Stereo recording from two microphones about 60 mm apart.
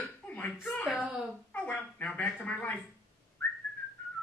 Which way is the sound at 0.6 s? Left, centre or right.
Centre.